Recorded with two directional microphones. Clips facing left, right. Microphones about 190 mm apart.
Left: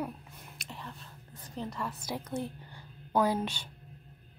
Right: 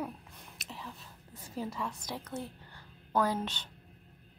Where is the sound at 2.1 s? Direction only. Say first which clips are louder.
Left 4 dB; 15° left (ahead or behind).